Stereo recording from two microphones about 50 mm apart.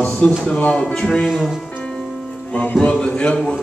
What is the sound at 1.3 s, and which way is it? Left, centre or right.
Speech, centre.